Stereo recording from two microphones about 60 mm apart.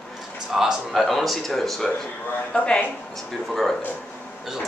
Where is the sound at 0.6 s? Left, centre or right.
Centre.